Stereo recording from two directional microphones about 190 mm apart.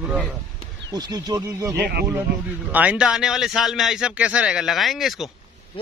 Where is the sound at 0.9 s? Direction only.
20° right (ahead or behind); by 5.2 s centre (ahead or behind).